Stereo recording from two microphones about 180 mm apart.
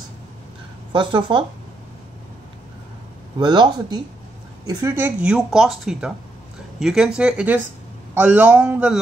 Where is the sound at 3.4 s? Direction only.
25° right (ahead or behind).